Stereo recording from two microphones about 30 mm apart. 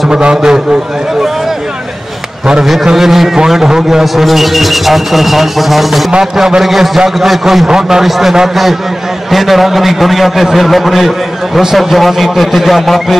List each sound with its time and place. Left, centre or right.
0.1 s a man's voice: right
2.6 s a man's voice: centre
4.0 s a man's voice: centre
7.6 s a man's voice: right
8.0 s a man's voice: centre